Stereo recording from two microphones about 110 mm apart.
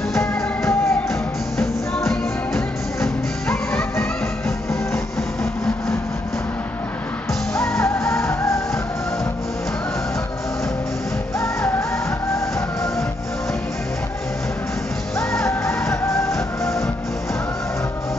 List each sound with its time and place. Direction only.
0.2 s music: 20° left (ahead or behind)
1.6 s music: 5° left (ahead or behind)
4.9 s a sound: 25° left (ahead or behind)
7.7 s music: 25° left (ahead or behind)
15.4 s music: 25° left (ahead or behind)